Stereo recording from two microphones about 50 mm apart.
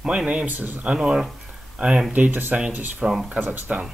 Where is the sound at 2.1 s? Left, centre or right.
Right.